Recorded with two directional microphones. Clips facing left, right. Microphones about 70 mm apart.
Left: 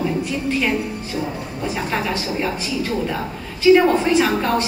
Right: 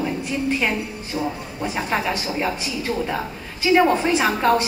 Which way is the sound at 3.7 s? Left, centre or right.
Centre.